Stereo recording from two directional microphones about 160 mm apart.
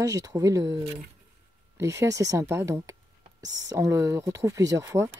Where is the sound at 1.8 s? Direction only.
20° right (ahead or behind).